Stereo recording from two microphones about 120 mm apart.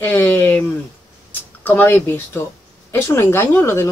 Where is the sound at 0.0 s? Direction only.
15° left (ahead or behind).